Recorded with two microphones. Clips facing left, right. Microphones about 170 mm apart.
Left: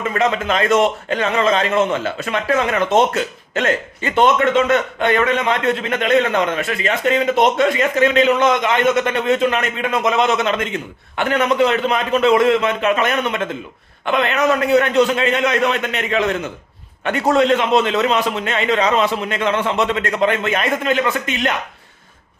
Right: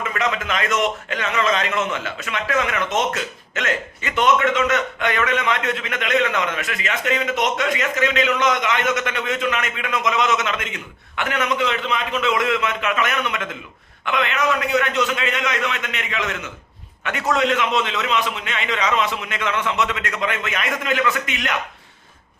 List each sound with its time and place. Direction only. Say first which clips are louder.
0.0 s a man's voice: left 5 dB; 30° left (ahead or behind)